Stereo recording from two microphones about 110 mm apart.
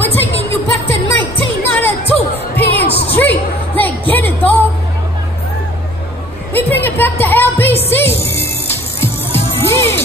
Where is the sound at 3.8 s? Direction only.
15° left (ahead or behind).